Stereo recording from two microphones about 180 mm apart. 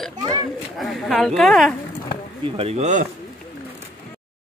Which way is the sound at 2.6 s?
35° right (ahead or behind).